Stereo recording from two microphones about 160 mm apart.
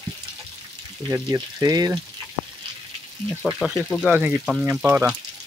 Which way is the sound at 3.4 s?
5° left (ahead or behind).